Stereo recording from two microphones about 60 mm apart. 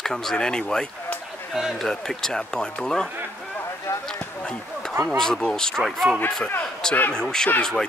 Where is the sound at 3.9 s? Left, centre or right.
Left.